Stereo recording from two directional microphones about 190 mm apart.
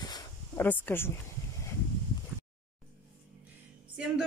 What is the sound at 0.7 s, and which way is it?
Speech, 10° left (ahead or behind).